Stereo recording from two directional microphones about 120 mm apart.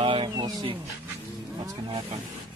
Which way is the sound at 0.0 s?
45° right (ahead or behind).